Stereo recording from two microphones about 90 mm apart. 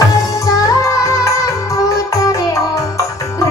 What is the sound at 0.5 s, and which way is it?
Music, 40° left (ahead or behind).